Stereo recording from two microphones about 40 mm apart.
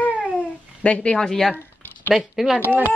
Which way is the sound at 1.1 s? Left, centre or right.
Centre.